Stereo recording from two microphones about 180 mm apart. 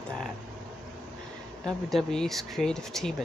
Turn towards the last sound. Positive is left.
turn(degrees=5)  # may be behind; listen again after turning